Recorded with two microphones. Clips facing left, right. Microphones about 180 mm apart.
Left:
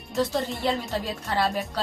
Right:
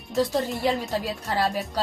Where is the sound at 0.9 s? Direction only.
40° right (ahead or behind).